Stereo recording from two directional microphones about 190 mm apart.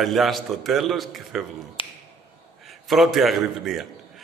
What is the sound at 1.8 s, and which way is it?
Speech, 25° left (ahead or behind).